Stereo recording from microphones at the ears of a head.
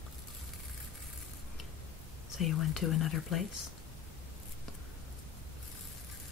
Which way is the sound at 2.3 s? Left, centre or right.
Left.